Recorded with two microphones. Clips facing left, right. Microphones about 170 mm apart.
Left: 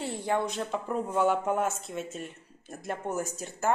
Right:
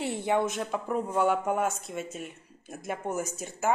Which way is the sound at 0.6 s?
5° right (ahead or behind).